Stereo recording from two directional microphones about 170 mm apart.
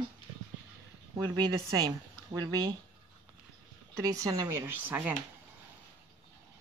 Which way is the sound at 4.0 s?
20° right (ahead or behind).